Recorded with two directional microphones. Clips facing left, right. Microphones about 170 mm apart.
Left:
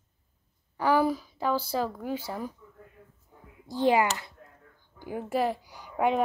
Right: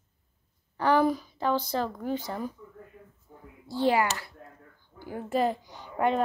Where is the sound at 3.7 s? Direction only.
15° left (ahead or behind).